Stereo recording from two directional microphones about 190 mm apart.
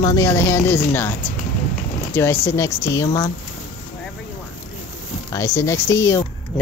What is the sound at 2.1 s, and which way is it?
Speech, 10° left (ahead or behind).